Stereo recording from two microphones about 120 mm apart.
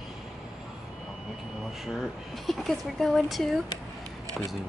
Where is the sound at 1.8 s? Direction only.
Centre (ahead or behind).